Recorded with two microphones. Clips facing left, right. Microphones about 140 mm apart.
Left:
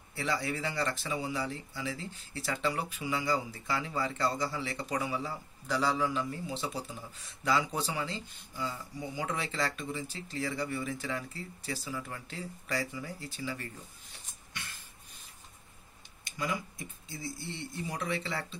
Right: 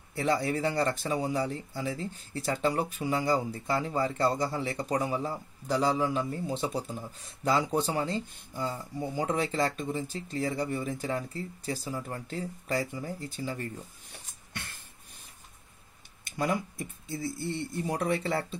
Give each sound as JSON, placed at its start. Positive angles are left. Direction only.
{"t": 0.2, "sound": "speech", "side_deg": -45}
{"t": 14.1, "sound": "beatboxing", "side_deg": -55}
{"t": 16.3, "sound": "speech", "side_deg": -50}